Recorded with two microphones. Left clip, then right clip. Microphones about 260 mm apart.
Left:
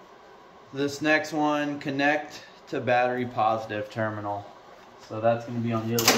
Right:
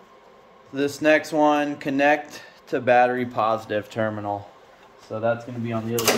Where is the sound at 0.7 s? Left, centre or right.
Centre.